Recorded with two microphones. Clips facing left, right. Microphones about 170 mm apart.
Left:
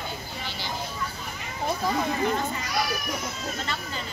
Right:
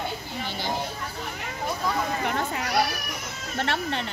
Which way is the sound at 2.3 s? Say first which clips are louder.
Even; 65° right (ahead or behind).